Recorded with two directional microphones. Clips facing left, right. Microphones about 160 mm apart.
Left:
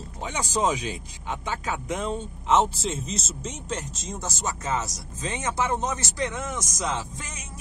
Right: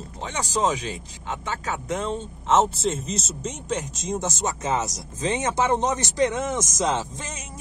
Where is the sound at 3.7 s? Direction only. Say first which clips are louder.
Right 7 dB; 20° right (ahead or behind).